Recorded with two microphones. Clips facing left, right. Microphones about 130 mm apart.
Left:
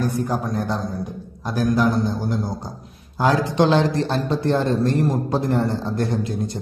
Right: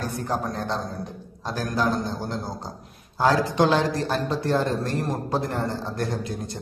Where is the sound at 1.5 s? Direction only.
15° left (ahead or behind).